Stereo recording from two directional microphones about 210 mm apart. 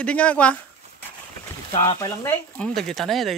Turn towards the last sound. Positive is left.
turn(degrees=0)  # may be behind; listen again after turning